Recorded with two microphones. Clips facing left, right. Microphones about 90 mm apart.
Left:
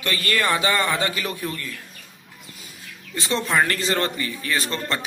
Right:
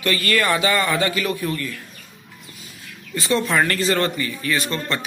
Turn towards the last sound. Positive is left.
turn(degrees=30)  # may be behind; listen again after turning